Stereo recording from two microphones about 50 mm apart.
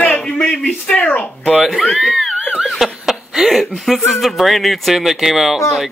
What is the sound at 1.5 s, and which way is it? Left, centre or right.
Speech, centre.